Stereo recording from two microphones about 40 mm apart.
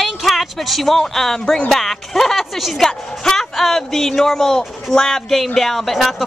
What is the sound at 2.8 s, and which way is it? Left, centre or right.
Speech, centre.